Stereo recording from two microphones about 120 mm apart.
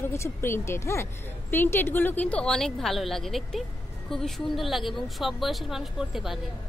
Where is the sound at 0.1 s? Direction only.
20° left (ahead or behind).